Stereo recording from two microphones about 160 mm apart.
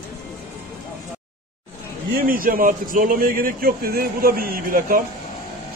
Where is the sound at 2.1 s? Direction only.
60° right (ahead or behind).